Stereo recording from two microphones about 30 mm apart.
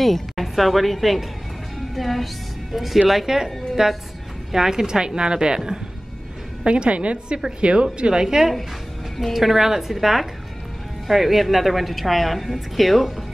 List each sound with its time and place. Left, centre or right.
0.0 s a woman's voice: centre
3.3 s a woman's voice: centre
6.6 s a woman's voice: right
9.3 s a woman's voice: centre